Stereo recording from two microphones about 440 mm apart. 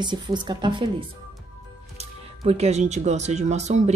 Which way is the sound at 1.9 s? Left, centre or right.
Centre.